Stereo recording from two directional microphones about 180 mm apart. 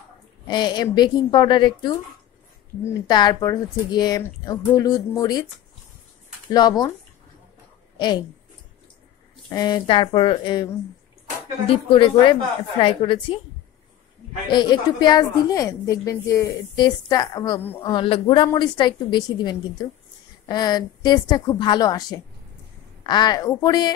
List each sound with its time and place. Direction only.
0.5 s a woman's voice: 25° left (ahead or behind)
6.5 s a woman's voice: 20° left (ahead or behind)
9.5 s a woman's voice: 20° left (ahead or behind)
14.5 s a woman's voice: 25° left (ahead or behind)
17.8 s a woman's voice: 30° left (ahead or behind)